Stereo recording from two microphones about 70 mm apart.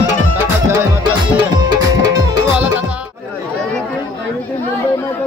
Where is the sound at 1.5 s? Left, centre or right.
Right.